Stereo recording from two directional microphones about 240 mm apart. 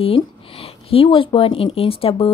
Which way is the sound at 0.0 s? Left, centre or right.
Left.